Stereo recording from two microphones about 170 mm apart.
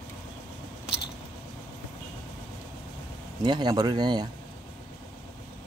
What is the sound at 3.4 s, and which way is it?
Speech, 25° right (ahead or behind).